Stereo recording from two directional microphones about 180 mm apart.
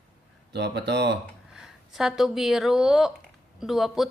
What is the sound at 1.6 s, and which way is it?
Speech, centre (ahead or behind).